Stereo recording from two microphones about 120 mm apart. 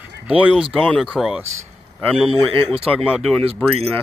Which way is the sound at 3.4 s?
55° right (ahead or behind).